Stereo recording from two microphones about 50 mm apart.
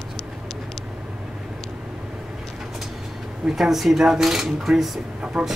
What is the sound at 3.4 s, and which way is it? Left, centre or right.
Speech, centre.